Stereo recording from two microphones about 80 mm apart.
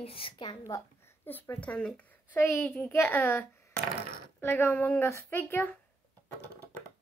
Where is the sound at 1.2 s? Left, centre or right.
Left.